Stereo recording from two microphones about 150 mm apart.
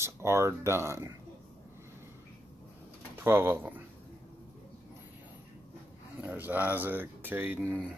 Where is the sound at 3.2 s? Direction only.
15° right (ahead or behind).